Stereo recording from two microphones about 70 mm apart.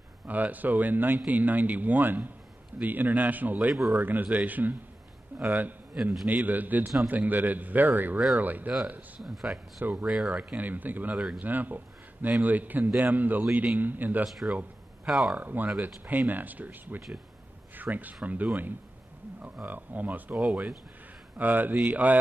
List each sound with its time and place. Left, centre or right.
0.3 s speech: right
9.2 s speech: centre
9.8 s speech: right
10.0 s speech: centre
10.3 s speech: right
14.2 s speech: centre
15.3 s speech: right